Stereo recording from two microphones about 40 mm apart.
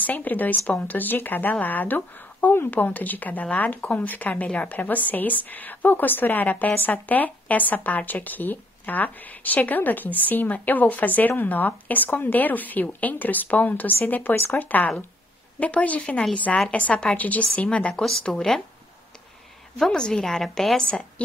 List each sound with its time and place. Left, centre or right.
0.0 s a woman's voice: left
17.6 s a woman's voice: left
19.8 s a woman's voice: centre